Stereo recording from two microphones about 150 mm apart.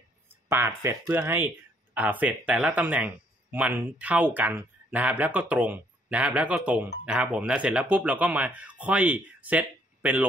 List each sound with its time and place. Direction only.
0.3 s speech: 15° right (ahead or behind)